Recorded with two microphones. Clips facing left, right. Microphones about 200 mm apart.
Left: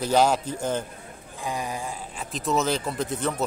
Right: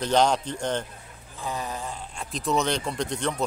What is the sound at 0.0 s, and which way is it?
A man's voice, 5° left (ahead or behind).